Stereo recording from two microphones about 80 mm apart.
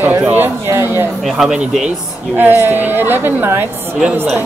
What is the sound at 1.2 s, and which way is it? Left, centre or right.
Speech, centre.